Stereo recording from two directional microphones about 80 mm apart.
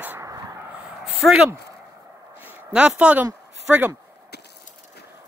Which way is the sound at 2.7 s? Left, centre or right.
Centre.